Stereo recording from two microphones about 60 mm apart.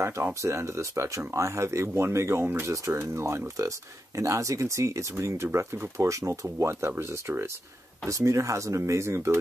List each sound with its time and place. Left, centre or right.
0.0 s speech: right
8.1 s speech: right